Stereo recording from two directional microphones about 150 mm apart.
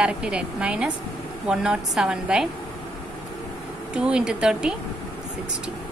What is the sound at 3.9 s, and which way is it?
Speech, 5° right (ahead or behind).